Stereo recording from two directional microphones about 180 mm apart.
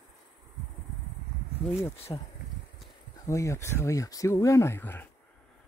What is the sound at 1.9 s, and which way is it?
Speech, 35° left (ahead or behind).